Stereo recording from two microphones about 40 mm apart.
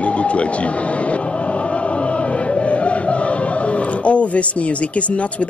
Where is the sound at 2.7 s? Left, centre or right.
Left.